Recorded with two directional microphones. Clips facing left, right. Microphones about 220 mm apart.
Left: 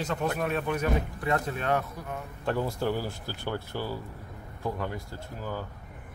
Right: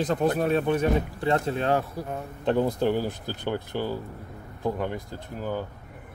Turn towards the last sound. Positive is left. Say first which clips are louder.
# right 5 dB
turn(degrees=-20)  # may be behind; listen again after turning